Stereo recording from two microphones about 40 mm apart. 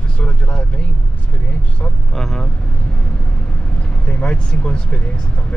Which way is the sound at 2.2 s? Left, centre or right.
Centre.